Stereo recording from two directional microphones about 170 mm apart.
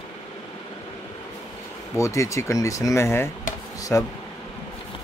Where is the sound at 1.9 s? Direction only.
20° left (ahead or behind).